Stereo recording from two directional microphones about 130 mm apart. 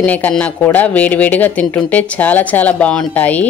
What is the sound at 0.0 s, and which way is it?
Speech, 10° left (ahead or behind).